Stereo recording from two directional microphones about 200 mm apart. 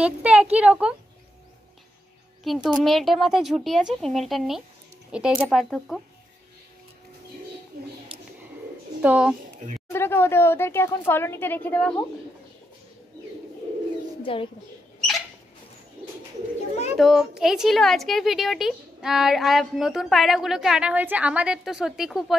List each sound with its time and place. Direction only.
0.0 s speech: 5° right (ahead or behind)
2.4 s a woman's voice: centre (ahead or behind)
9.0 s speech: 5° right (ahead or behind)
9.9 s a woman's voice: 10° left (ahead or behind)
14.2 s speech: 25° left (ahead or behind)
15.0 s mouse: centre (ahead or behind)
16.9 s a woman's voice: centre (ahead or behind)